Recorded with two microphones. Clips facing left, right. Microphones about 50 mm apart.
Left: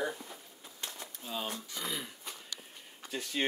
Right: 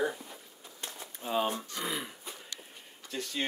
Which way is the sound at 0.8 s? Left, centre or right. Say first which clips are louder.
Right 3 dB; right.